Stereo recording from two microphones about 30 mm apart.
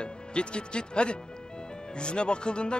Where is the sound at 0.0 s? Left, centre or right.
Left.